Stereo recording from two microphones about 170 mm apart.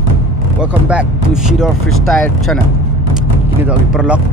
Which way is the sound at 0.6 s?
5° right (ahead or behind).